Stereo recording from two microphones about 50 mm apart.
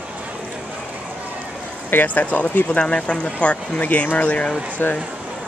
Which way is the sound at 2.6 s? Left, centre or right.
Left.